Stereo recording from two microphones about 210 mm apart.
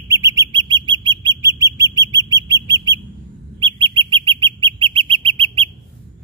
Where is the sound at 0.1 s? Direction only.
15° right (ahead or behind).